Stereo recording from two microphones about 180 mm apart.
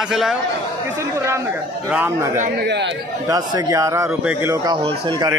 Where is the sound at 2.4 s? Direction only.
65° right (ahead or behind).